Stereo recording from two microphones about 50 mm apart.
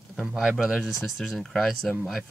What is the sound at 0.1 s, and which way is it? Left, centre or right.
Speech, centre.